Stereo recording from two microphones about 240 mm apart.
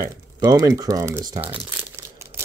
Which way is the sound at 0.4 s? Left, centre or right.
Centre.